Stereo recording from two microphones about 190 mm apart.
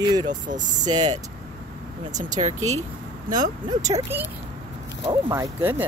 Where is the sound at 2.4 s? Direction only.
35° right (ahead or behind).